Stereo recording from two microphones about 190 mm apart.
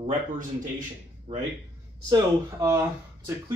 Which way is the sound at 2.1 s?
15° right (ahead or behind).